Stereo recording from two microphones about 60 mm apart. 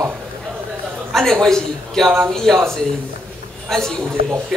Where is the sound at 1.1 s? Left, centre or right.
Centre.